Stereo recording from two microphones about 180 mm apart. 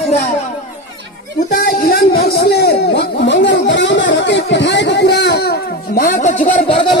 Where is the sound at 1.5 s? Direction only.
60° left (ahead or behind).